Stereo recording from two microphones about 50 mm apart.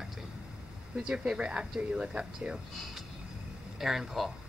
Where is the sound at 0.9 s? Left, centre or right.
Centre.